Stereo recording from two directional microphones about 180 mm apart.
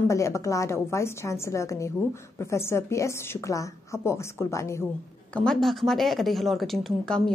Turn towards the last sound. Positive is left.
turn(degrees=5)  # may be behind; listen again after turning